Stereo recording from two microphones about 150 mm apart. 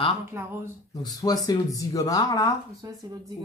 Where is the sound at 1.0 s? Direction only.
25° left (ahead or behind).